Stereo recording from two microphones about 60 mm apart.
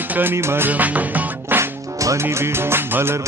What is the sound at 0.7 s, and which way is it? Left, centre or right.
Music, right.